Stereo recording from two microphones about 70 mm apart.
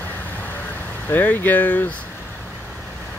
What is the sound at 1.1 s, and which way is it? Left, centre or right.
Speech, left.